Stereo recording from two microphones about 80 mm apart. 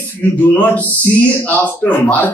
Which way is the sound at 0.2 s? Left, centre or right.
Left.